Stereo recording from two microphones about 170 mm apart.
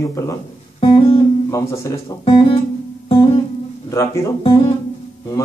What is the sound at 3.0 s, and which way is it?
Music, 35° left (ahead or behind).